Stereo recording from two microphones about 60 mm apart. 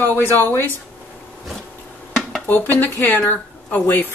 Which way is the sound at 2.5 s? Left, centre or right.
Left.